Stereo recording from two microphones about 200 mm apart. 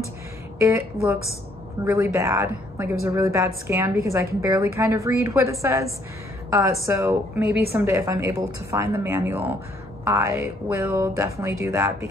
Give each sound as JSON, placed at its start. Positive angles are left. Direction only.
{"t": 0.6, "sound": "a man's voice", "side_deg": -15}